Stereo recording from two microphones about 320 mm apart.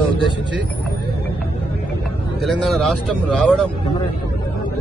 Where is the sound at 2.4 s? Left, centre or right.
Centre.